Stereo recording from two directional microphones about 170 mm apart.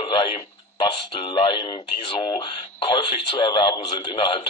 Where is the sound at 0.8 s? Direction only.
30° left (ahead or behind).